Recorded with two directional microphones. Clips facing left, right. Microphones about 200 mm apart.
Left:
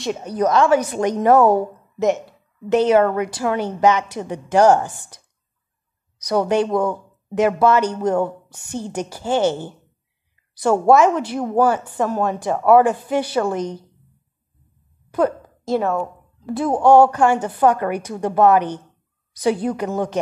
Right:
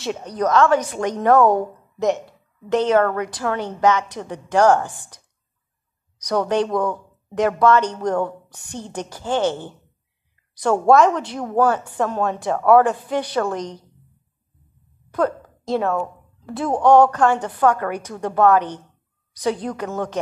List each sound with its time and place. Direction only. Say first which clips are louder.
0.0 s a woman's voice: left 2 dB; 5° left (ahead or behind)
6.2 s a woman's voice: left 2 dB; 10° left (ahead or behind)
15.1 s a woman's voice: left 2 dB; 5° left (ahead or behind)